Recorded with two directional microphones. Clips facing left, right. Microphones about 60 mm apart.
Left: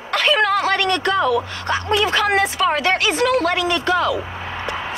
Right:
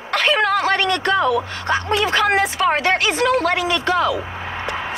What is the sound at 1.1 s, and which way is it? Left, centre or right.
A woman's voice, right.